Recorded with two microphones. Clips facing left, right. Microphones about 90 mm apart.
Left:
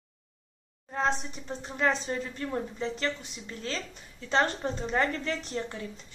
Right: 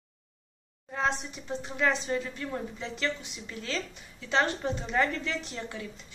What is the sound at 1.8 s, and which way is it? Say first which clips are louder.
A woman's voice: even; 35° left (ahead or behind).